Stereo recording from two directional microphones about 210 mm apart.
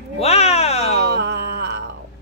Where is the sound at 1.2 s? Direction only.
55° right (ahead or behind).